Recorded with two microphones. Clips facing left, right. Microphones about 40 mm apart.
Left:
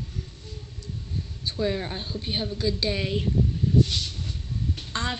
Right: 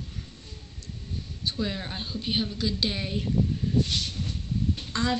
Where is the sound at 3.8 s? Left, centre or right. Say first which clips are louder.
Left 3 dB; right.